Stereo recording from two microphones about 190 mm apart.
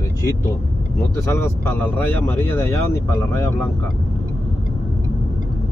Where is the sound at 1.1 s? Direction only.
15° left (ahead or behind).